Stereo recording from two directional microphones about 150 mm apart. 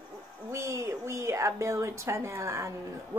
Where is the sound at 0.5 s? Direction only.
20° right (ahead or behind).